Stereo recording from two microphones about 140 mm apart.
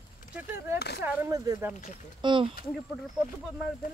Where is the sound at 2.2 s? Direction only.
35° right (ahead or behind).